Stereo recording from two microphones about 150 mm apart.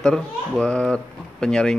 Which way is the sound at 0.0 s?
5° left (ahead or behind).